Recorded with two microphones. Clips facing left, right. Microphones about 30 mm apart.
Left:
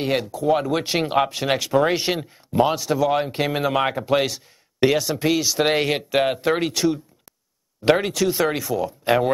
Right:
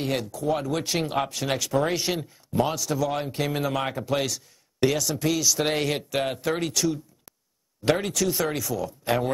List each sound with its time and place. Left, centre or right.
0.0 s speech: left